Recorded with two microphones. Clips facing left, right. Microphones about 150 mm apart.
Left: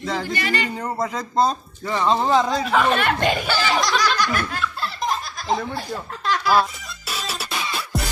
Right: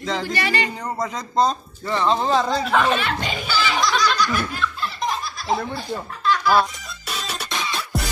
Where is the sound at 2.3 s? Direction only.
Centre (ahead or behind).